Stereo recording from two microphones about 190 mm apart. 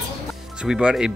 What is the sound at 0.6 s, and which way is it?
Speech, 5° right (ahead or behind).